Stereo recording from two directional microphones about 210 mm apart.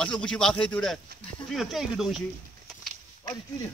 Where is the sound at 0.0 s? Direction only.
5° left (ahead or behind).